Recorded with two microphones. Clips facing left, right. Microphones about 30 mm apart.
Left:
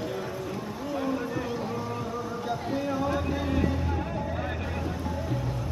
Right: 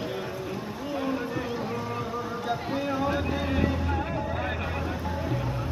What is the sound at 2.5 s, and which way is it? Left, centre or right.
Speech, centre.